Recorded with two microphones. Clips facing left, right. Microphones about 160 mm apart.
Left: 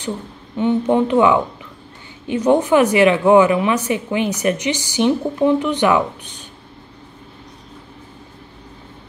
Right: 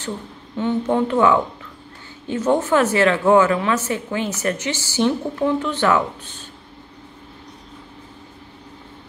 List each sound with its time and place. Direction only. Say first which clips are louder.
0.6 s a woman's voice: left 4 dB; 15° left (ahead or behind)